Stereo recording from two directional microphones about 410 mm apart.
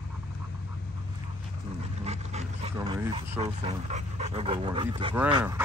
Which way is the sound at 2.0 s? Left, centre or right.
Centre.